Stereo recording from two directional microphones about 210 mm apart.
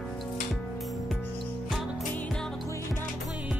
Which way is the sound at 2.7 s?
15° left (ahead or behind).